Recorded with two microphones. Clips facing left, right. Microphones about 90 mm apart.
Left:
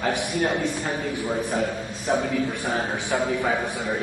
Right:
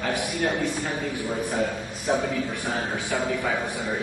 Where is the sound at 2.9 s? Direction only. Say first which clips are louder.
Left 2 dB; 20° left (ahead or behind).